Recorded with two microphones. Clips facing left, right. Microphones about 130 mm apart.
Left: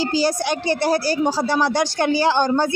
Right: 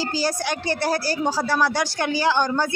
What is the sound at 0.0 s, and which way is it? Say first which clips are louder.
Speech: left 4 dB; 20° left (ahead or behind).